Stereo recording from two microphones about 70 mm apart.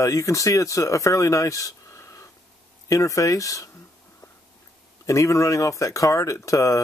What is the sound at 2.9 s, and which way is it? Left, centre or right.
Speech, left.